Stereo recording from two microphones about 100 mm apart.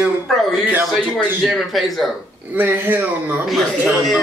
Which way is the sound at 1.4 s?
Centre (ahead or behind).